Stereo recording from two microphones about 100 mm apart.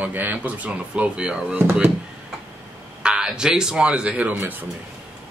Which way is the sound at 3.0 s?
10° right (ahead or behind).